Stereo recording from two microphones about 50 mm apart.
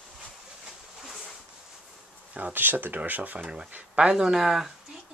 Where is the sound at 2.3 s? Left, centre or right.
Right.